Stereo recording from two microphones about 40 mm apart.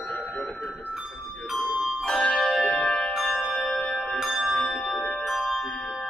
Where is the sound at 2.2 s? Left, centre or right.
Centre.